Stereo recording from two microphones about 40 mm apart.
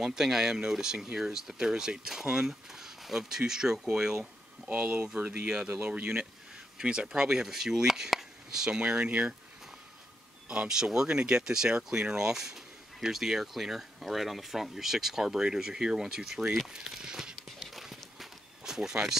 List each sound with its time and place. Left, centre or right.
0.0 s speech: centre
4.7 s speech: right
6.8 s speech: centre
7.4 s chop: centre
8.6 s speech: right
10.8 s speech: centre
16.7 s a sound: centre
17.8 s walk: centre